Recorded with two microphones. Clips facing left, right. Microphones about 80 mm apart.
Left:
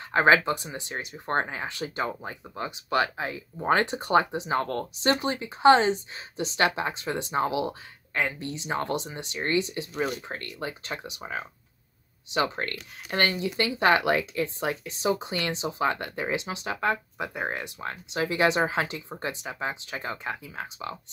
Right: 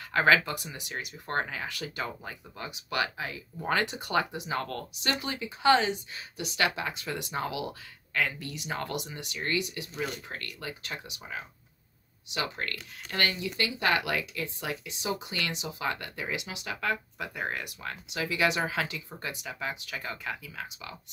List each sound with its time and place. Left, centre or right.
0.1 s speech: left
12.3 s speech: left